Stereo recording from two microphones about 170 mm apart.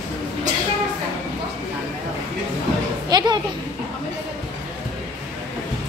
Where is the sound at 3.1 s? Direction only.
25° right (ahead or behind).